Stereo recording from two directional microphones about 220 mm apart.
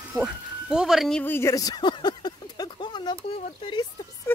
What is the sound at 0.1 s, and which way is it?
Speech, centre (ahead or behind).